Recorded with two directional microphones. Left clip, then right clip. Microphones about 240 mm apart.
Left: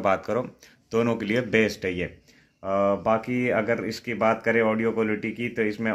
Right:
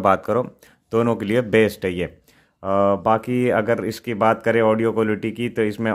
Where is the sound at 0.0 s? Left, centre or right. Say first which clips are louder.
Right 6 dB; right.